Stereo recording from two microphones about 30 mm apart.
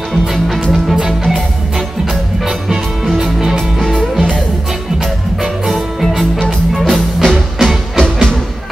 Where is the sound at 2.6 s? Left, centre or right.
Centre.